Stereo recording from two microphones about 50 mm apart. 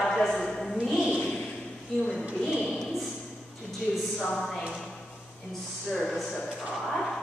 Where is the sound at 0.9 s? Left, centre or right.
Centre.